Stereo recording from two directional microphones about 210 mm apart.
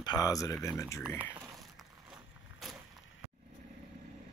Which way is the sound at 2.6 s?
Centre (ahead or behind).